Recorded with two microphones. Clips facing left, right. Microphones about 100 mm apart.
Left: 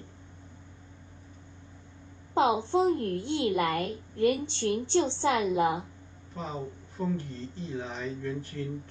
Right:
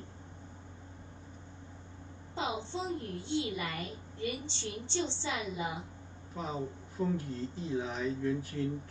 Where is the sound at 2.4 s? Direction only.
55° left (ahead or behind).